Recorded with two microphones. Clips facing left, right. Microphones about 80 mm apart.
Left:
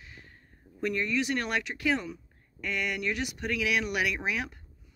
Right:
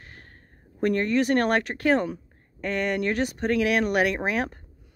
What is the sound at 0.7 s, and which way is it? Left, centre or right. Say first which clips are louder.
A woman's voice: right 7 dB; right.